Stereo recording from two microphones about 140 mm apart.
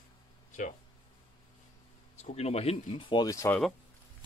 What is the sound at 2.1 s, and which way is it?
Speech, 50° left (ahead or behind).